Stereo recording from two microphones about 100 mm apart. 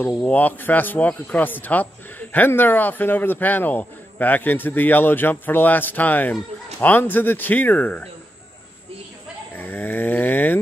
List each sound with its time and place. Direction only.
0.0 s speech: 15° left (ahead or behind)
9.6 s speech: 20° left (ahead or behind)